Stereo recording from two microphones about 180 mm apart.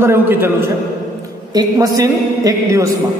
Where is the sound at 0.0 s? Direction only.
15° right (ahead or behind).